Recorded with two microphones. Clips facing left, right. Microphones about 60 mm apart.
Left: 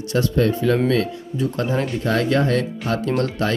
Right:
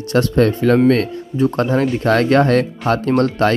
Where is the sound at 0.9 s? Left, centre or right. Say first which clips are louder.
Right 4 dB; right.